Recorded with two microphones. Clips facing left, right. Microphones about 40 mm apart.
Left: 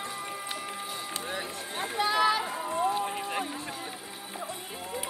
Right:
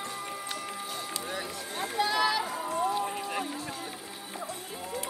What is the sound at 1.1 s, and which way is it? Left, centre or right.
Run, left.